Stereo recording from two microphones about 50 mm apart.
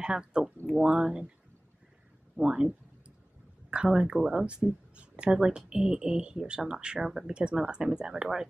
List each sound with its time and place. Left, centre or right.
0.0 s speech: centre
2.3 s speech: centre
3.7 s speech: centre